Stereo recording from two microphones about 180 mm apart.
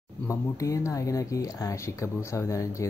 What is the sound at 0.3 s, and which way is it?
Speech, 15° left (ahead or behind).